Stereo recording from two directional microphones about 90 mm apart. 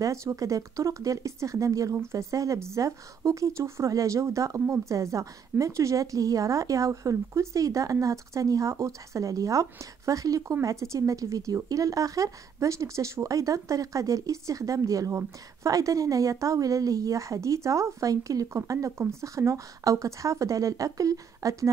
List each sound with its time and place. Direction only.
0.0 s a woman's voice: 35° right (ahead or behind)